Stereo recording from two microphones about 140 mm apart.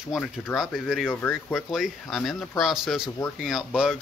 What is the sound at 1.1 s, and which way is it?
Speech, 15° left (ahead or behind).